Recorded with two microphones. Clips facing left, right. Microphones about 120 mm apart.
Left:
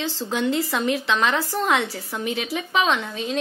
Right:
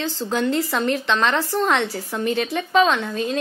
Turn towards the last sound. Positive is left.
turn(degrees=0)  # may be behind; listen again after turning